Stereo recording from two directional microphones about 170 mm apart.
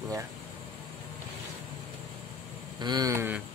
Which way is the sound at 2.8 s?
20° right (ahead or behind).